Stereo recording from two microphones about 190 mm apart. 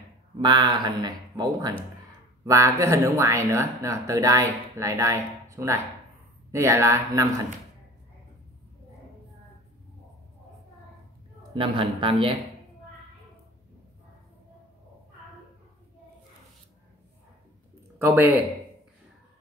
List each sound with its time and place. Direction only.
0.4 s speech: 25° right (ahead or behind)
11.5 s speech: 30° right (ahead or behind)
18.0 s speech: 10° right (ahead or behind)